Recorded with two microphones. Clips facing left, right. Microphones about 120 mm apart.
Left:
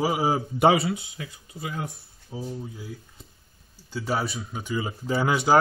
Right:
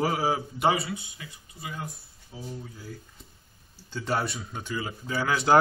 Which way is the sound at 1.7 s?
65° left (ahead or behind).